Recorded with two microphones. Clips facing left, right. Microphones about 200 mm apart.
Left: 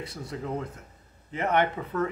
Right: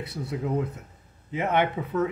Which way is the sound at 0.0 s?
60° right (ahead or behind).